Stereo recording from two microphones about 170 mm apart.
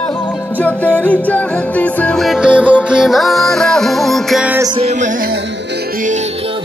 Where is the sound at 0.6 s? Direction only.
10° left (ahead or behind).